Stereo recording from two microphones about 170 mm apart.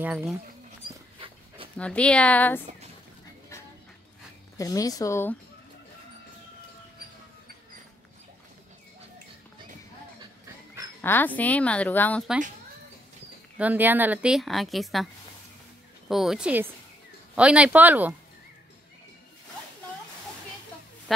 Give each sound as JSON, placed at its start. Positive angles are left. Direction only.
{"t": 0.0, "sound": "speech", "side_deg": -10}
{"t": 1.8, "sound": "speech", "side_deg": 5}
{"t": 4.6, "sound": "speech", "side_deg": 20}
{"t": 11.0, "sound": "speech", "side_deg": 10}
{"t": 13.6, "sound": "a woman's voice", "side_deg": -10}
{"t": 16.1, "sound": "a woman's voice", "side_deg": 0}